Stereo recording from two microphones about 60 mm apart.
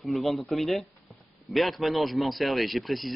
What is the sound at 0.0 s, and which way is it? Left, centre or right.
A man's voice, centre.